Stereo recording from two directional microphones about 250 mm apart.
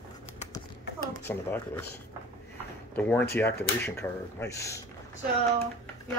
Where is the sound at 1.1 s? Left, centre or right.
Centre.